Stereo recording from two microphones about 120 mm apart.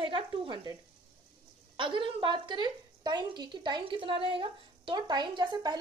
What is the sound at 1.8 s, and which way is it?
A woman's voice, 40° right (ahead or behind).